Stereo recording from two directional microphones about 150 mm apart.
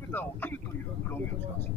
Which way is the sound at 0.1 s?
15° left (ahead or behind).